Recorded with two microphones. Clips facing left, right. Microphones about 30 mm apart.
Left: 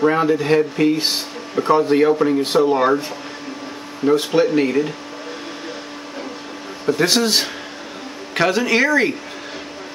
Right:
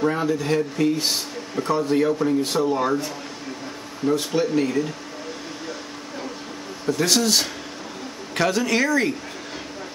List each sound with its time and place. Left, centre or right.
0.0 s speech: left
6.9 s speech: left